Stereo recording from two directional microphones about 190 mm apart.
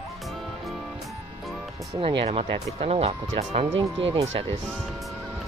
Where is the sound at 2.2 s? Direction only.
30° right (ahead or behind).